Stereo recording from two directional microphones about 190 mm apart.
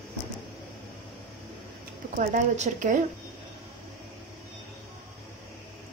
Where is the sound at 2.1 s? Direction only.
40° right (ahead or behind).